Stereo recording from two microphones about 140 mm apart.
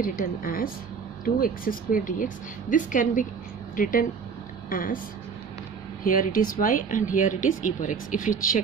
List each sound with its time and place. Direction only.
0.0 s a woman's voice: 80° left
4.6 s a woman's voice: 85° left
6.0 s speech: 80° left